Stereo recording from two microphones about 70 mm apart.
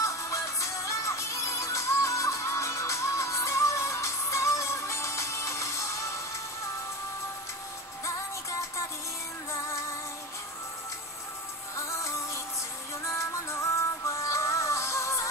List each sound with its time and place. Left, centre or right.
0.0 s music: left
8.0 s music: left
11.7 s music: left